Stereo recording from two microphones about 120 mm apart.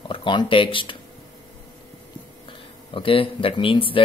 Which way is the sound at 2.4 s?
50° left (ahead or behind).